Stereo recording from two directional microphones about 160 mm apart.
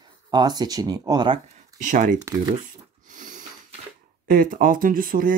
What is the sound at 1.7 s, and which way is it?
Speech, 55° right (ahead or behind).